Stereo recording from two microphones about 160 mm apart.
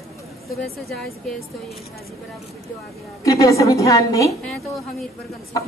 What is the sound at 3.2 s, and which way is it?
A woman's voice, 20° left (ahead or behind).